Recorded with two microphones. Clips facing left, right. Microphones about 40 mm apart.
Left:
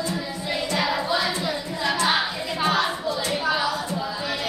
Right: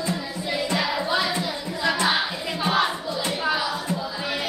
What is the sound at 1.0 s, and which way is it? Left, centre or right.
Music, centre.